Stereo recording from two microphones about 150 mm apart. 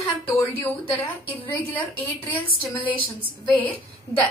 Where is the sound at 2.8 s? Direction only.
35° left (ahead or behind).